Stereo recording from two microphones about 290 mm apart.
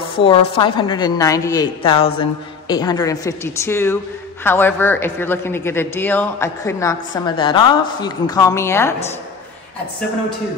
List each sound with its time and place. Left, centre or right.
0.2 s a man's voice: centre